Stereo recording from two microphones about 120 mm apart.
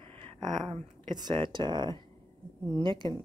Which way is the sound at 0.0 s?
40° right (ahead or behind).